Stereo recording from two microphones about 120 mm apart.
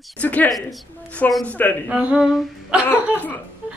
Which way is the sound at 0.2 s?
15° left (ahead or behind).